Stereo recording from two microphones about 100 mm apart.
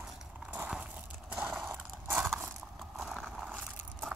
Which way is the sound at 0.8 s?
10° right (ahead or behind).